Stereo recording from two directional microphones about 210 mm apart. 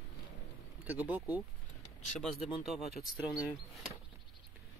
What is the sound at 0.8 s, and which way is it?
Speech, 10° right (ahead or behind).